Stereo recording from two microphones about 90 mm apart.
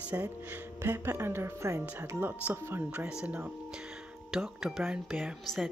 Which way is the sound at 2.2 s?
25° right (ahead or behind).